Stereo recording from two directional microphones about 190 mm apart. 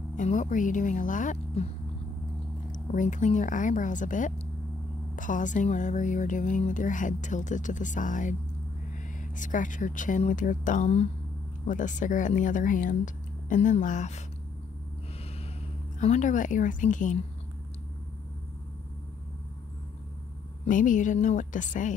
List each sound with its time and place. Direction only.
0.1 s speech: 40° left (ahead or behind)
2.7 s speech: 40° left (ahead or behind)
16.0 s speech: 40° left (ahead or behind)
20.6 s a woman's voice: 45° left (ahead or behind)